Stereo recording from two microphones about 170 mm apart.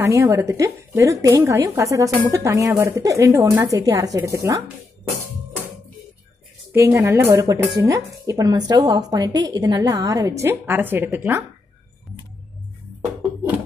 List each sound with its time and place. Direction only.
0.0 s a woman's voice: 15° right (ahead or behind)
6.7 s a woman's voice: 15° right (ahead or behind)